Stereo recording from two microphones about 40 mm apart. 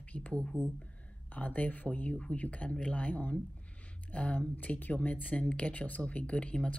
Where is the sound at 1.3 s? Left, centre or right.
Left.